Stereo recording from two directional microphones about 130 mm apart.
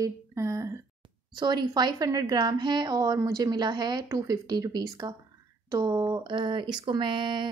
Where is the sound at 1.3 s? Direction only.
35° right (ahead or behind).